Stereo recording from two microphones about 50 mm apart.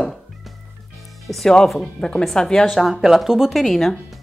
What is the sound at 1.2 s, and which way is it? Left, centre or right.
Speech, centre.